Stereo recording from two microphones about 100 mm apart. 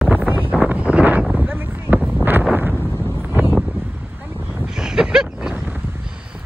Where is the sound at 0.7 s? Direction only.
15° right (ahead or behind).